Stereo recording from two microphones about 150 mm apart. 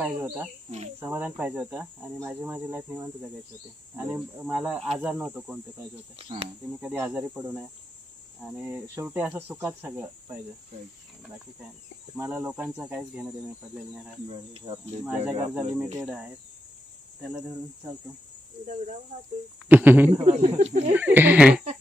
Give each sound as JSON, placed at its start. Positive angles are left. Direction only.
{"t": 0.0, "sound": "speech", "side_deg": -10}
{"t": 0.7, "sound": "cricket", "side_deg": -50}
{"t": 0.9, "sound": "speech", "side_deg": -15}
{"t": 6.1, "sound": "speech", "side_deg": -40}
{"t": 6.8, "sound": "speech", "side_deg": -10}
{"t": 12.2, "sound": "speech", "side_deg": -10}
{"t": 14.5, "sound": "speech", "side_deg": -40}
{"t": 15.0, "sound": "speech", "side_deg": -10}
{"t": 19.7, "sound": "speech", "side_deg": -10}
{"t": 20.1, "sound": "speech", "side_deg": -50}
{"t": 20.9, "sound": "speech", "side_deg": -10}